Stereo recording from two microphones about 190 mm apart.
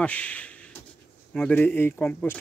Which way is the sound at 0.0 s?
5° left (ahead or behind).